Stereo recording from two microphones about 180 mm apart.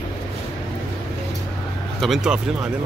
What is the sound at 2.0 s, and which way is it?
Speech, centre (ahead or behind).